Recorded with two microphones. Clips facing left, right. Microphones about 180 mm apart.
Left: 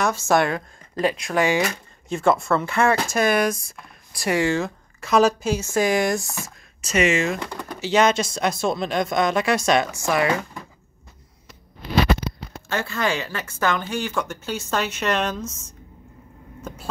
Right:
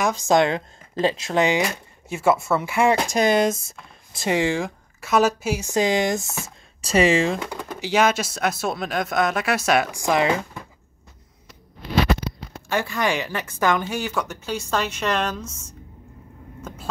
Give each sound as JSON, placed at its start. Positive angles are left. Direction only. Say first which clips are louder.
{"t": 0.0, "sound": "speech", "louder": "right 1 dB", "side_deg": -15}
{"t": 2.0, "sound": "a woman's voice", "louder": "even", "side_deg": -5}
{"t": 5.0, "sound": "speech", "louder": "left 2 dB", "side_deg": -5}
{"t": 7.3, "sound": "speech", "louder": "right 1 dB", "side_deg": -5}
{"t": 12.6, "sound": "a woman's voice", "louder": "right 1 dB", "side_deg": -15}
{"t": 16.6, "sound": "speech", "louder": "right 1 dB", "side_deg": 10}